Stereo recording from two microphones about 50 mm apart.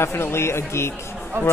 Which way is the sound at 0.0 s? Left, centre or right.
Left.